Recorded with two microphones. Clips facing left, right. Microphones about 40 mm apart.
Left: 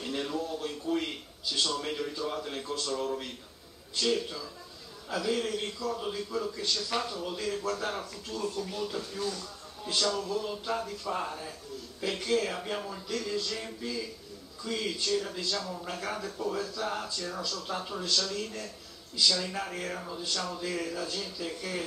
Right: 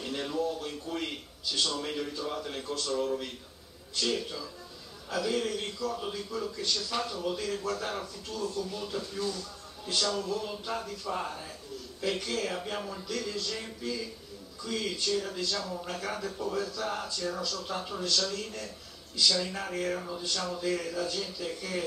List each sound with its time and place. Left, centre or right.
0.0 s a man's voice: centre
8.5 s speech: centre
8.8 s speech: centre